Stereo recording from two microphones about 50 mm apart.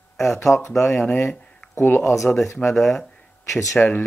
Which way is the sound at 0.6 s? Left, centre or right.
Left.